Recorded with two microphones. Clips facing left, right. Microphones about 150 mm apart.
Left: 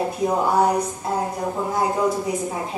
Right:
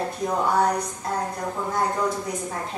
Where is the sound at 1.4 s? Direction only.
15° left (ahead or behind).